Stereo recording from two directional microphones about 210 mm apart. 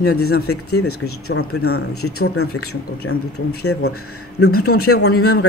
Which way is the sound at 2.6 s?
90° left.